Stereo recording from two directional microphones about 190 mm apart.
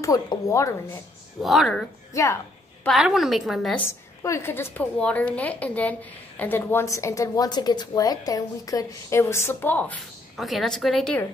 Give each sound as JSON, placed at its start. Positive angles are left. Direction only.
{"t": 0.0, "sound": "a woman's voice", "side_deg": 15}
{"t": 1.4, "sound": "a woman's voice", "side_deg": 0}
{"t": 2.1, "sound": "a woman's voice", "side_deg": 15}
{"t": 2.8, "sound": "a woman's voice", "side_deg": 0}
{"t": 4.2, "sound": "a woman's voice", "side_deg": 15}